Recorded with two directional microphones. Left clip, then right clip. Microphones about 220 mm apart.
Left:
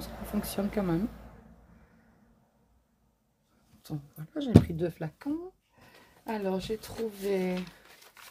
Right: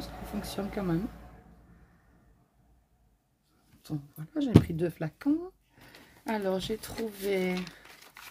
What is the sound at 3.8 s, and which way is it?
Speech, 5° right (ahead or behind).